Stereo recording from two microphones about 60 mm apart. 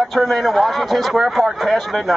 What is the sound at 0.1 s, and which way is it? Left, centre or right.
A man's voice, centre.